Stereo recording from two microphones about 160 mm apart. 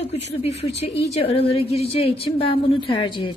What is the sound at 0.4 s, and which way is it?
A woman's voice, 40° left (ahead or behind).